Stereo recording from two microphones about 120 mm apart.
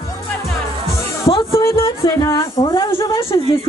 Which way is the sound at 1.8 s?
40° left (ahead or behind).